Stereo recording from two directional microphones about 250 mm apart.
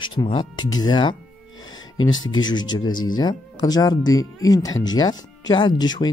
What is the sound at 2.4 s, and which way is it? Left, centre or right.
Speech, centre.